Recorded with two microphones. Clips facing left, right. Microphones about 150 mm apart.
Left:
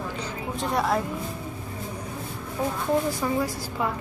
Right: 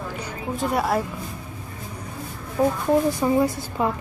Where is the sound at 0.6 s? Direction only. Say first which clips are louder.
Right 2 dB; 5° right (ahead or behind).